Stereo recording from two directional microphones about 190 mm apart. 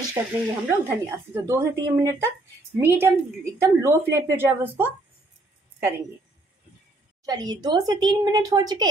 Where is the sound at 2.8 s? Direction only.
15° right (ahead or behind).